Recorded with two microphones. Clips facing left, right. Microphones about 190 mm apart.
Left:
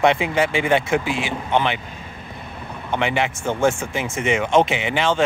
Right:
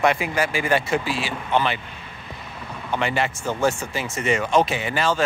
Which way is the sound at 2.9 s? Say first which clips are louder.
Left 2 dB; 20° left (ahead or behind).